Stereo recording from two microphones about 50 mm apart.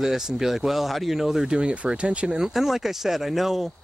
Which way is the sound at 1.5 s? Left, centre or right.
Right.